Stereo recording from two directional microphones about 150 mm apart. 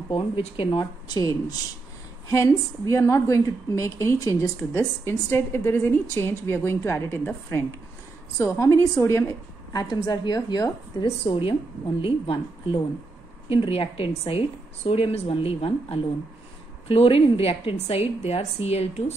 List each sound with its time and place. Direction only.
0.1 s a woman's voice: 35° left (ahead or behind)